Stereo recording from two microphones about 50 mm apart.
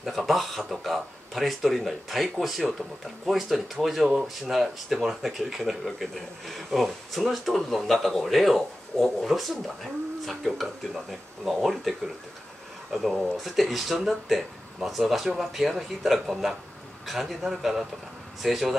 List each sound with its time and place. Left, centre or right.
0.0 s speech: centre
12.9 s speech: centre